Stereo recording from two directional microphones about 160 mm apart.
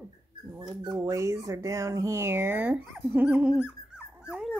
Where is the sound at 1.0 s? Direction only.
20° right (ahead or behind).